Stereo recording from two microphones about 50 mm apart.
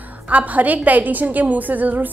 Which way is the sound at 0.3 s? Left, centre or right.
Right.